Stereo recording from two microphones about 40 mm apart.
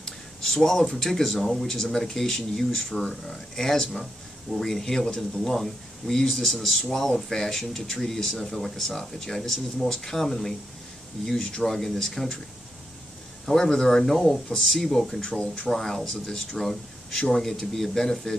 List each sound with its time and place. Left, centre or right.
0.0 s a sound: centre
0.8 s speech: centre
11.2 s speech: centre
11.6 s speech: centre
13.5 s speech: centre